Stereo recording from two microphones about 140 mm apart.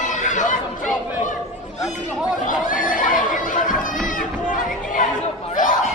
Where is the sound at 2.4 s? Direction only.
70° left (ahead or behind).